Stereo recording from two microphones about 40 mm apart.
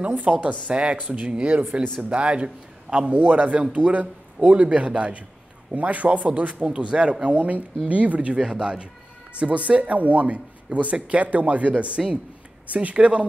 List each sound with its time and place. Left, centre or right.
0.1 s a man's voice: right
1.3 s speech: right
1.6 s a man's voice: right
2.0 s a man's voice: right
3.1 s a man's voice: right
8.4 s a man's voice: right